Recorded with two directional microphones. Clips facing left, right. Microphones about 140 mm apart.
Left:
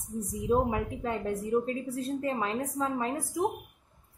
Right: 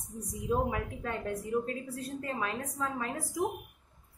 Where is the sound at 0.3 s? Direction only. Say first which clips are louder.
Left 4 dB; 25° left (ahead or behind).